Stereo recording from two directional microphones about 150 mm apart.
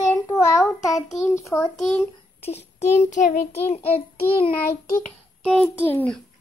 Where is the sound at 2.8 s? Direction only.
50° left (ahead or behind).